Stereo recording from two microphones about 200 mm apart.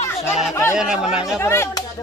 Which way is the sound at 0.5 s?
15° left (ahead or behind).